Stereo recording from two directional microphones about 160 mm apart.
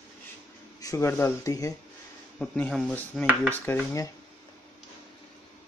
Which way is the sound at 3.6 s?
15° left (ahead or behind).